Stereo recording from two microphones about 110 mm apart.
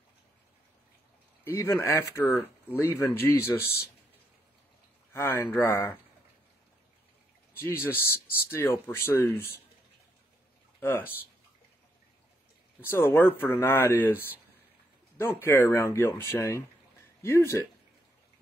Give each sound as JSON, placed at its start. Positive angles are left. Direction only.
{"t": 1.4, "sound": "speech", "side_deg": 25}
{"t": 5.1, "sound": "speech", "side_deg": 20}
{"t": 7.6, "sound": "speech", "side_deg": 20}
{"t": 10.8, "sound": "speech", "side_deg": 20}
{"t": 12.8, "sound": "speech", "side_deg": 20}